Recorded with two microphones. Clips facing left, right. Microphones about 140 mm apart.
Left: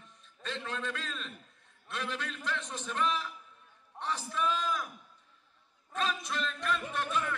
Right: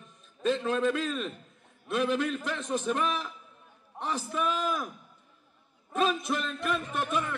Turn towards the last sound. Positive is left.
turn(degrees=-15)  # may be behind; listen again after turning